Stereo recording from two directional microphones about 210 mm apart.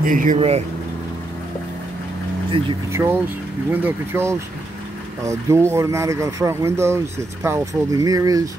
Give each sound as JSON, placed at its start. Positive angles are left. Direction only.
{"t": 0.0, "sound": "speech", "side_deg": -40}
{"t": 2.9, "sound": "speech", "side_deg": -15}